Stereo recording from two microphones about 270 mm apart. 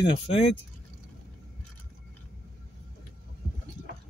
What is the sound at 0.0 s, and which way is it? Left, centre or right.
Speech, left.